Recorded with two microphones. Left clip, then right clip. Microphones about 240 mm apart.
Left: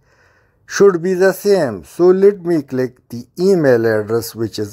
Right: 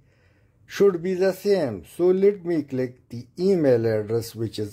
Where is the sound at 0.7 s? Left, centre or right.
Left.